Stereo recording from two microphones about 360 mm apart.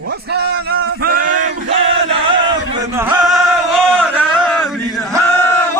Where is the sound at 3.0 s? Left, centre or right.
Centre.